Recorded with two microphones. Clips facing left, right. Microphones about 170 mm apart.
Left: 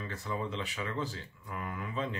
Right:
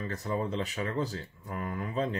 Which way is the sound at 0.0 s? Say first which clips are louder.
Right 4 dB; 40° right (ahead or behind).